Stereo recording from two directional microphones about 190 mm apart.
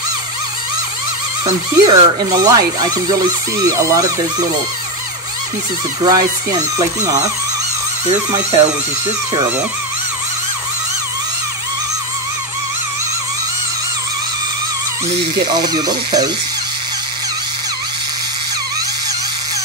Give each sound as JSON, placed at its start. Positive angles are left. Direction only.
{"t": 1.4, "sound": "speech", "side_deg": -20}
{"t": 6.0, "sound": "speech", "side_deg": -20}
{"t": 15.5, "sound": "speech", "side_deg": -20}